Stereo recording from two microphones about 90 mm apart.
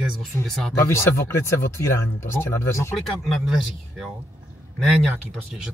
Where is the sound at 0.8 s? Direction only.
30° left (ahead or behind).